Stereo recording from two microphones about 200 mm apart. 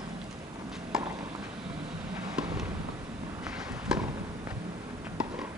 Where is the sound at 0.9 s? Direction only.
5° right (ahead or behind).